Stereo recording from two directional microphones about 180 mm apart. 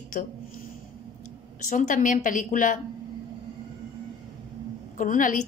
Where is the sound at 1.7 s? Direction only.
45° left (ahead or behind).